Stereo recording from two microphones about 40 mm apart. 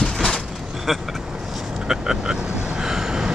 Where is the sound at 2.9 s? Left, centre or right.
Centre.